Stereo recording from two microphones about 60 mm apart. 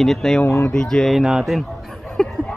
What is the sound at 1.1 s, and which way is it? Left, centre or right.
Speech, centre.